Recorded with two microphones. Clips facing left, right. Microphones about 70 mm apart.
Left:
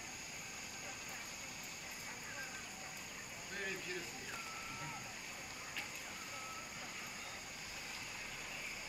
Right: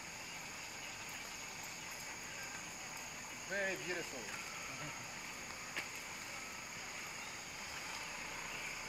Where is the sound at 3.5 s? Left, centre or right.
Right.